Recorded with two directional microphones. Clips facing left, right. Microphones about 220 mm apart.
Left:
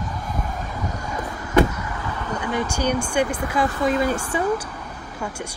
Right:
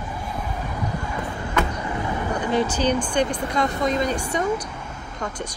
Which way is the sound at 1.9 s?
20° right (ahead or behind).